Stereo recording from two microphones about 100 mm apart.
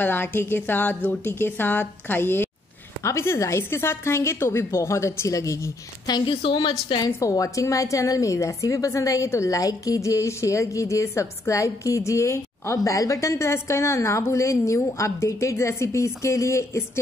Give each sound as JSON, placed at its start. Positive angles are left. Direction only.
{"t": 0.0, "sound": "a woman's voice", "side_deg": 20}
{"t": 6.1, "sound": "a woman's voice", "side_deg": 55}
{"t": 7.1, "sound": "a woman's voice", "side_deg": 30}